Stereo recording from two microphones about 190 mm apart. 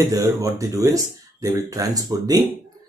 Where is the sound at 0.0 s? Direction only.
15° right (ahead or behind).